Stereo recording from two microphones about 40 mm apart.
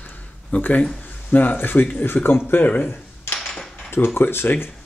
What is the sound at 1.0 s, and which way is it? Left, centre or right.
Speech, left.